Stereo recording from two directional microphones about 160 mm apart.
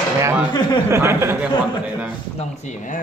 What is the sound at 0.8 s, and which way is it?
Speech, 15° right (ahead or behind).